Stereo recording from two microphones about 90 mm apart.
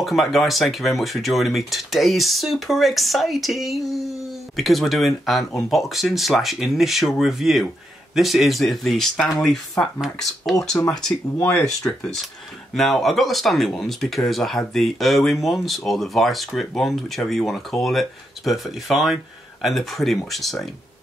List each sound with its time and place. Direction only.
0.0 s speech: centre (ahead or behind)
11.4 s speech: 25° left (ahead or behind)
12.0 s speech: 5° left (ahead or behind)